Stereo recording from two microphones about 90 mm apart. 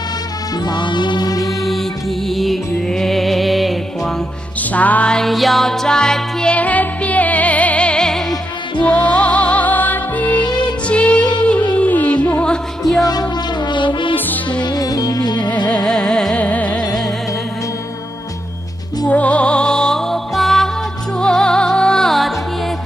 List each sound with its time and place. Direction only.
0.7 s music: 55° left (ahead or behind)
1.4 s music: centre (ahead or behind)
4.7 s music: 15° left (ahead or behind)
13.0 s music: 45° left (ahead or behind); by 14.1 s 65° left (ahead or behind)
14.1 s music: 20° left (ahead or behind)
14.6 s music: 45° left (ahead or behind)
15.7 s music: 10° left (ahead or behind)
19.0 s music: 15° left (ahead or behind)